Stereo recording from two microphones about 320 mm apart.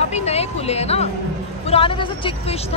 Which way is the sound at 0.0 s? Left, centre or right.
Centre.